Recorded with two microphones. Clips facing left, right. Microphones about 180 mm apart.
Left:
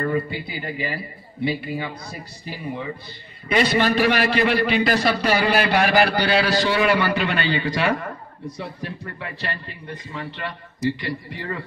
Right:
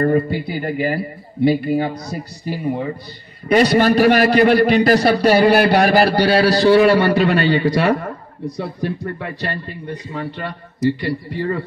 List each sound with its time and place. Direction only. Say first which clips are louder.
0.0 s a man's voice: right 7 dB; 45° right (ahead or behind)